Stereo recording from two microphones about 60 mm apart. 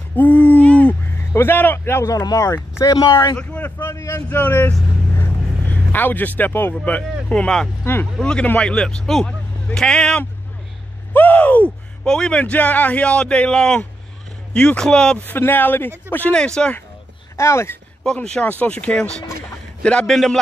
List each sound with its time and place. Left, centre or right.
0.1 s a sound: left
1.3 s a man's voice: left
2.0 s speech: left
3.9 s speech: left
4.3 s a man's voice: left
6.7 s speech: left
7.8 s speech: left
8.2 s speech: centre
11.1 s speech: left
15.2 s a man's voice: left
16.3 s speech: centre
17.4 s speech: left
18.0 s a man's voice: centre
20.1 s speech: centre